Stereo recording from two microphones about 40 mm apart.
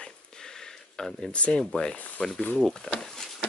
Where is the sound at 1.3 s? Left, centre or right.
Left.